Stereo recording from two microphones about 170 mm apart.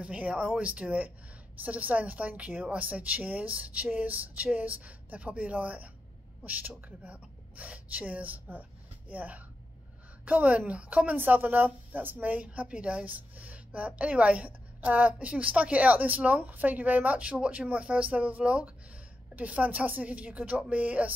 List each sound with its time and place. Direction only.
0.0 s a woman's voice: 5° right (ahead or behind)